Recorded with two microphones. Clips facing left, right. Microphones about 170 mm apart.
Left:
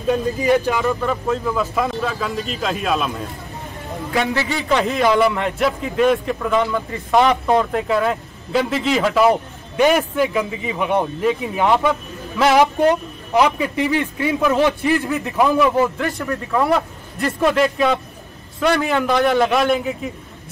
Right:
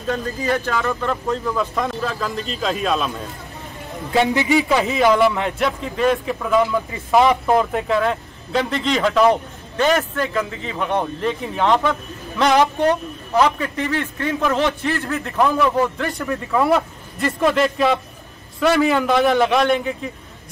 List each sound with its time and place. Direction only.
0.0 s a man's voice: 15° left (ahead or behind)
4.1 s a man's voice: 20° right (ahead or behind)
4.6 s a man's voice: centre (ahead or behind)